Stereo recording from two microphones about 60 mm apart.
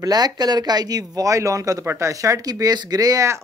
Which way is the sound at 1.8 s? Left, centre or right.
Right.